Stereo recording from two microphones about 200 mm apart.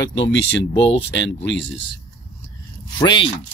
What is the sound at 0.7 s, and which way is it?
Speech, 30° left (ahead or behind).